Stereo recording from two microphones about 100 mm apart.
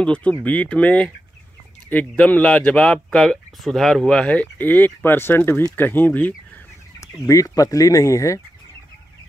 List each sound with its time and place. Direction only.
0.0 s speech: 10° left (ahead or behind)
7.0 s speech: 35° left (ahead or behind)